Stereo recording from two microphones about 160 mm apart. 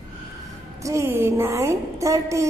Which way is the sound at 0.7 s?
20° right (ahead or behind).